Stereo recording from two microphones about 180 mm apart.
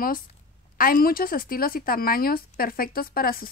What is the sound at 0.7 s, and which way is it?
Speech, 50° left (ahead or behind).